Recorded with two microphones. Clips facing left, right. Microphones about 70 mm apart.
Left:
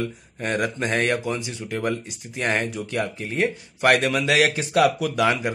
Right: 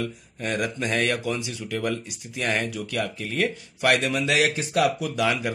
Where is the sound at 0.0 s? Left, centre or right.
Left.